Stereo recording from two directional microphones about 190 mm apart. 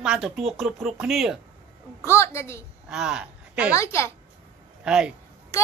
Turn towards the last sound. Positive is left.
turn(degrees=-5)  # may be behind; listen again after turning